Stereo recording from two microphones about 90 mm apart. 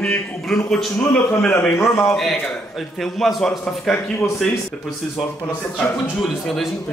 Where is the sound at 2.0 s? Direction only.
5° left (ahead or behind).